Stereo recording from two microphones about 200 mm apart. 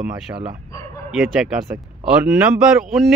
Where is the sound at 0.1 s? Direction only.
25° right (ahead or behind).